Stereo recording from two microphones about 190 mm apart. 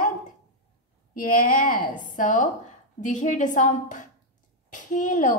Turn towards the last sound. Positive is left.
turn(degrees=40)  # may be behind; listen again after turning